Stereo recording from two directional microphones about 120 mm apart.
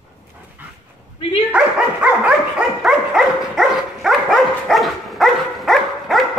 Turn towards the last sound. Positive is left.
turn(degrees=0)  # may be behind; listen again after turning